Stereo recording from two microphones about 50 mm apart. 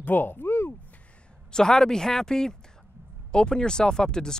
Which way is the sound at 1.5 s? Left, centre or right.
Centre.